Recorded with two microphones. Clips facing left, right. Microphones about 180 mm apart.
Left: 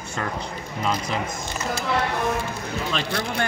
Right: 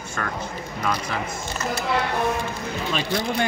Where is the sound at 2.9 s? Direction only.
15° right (ahead or behind).